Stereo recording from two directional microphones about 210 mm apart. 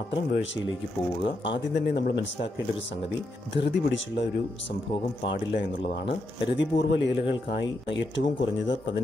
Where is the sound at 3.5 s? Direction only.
60° left (ahead or behind).